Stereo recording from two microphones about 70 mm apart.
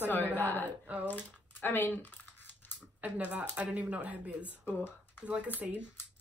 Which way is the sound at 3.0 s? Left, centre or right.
Centre.